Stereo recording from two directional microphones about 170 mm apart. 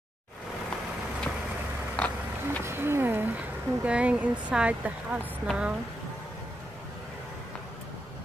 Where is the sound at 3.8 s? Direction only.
5° right (ahead or behind).